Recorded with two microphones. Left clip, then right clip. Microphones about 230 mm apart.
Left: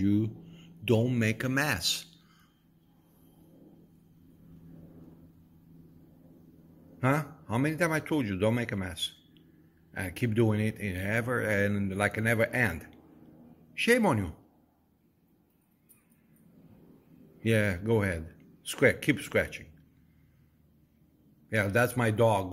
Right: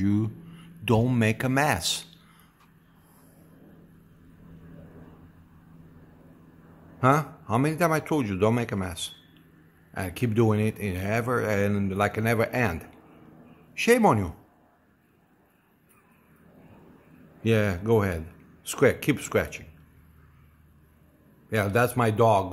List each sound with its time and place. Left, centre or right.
0.0 s speech: centre
7.0 s speech: centre
17.4 s speech: centre
21.5 s speech: centre